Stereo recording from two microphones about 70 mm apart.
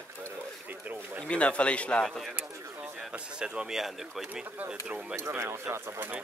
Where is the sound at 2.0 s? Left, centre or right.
Centre.